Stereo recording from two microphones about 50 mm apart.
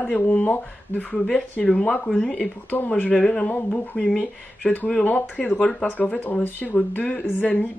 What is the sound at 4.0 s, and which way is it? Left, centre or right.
Speech, centre.